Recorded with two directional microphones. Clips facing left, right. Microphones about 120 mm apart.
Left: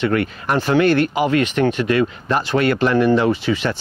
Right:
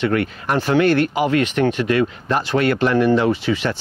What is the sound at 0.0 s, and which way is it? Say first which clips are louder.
Speech: left 1 dB; 20° left (ahead or behind).